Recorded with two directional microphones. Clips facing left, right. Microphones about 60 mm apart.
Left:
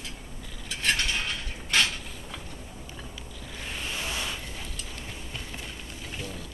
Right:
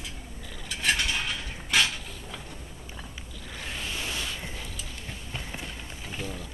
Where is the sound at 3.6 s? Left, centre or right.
Centre.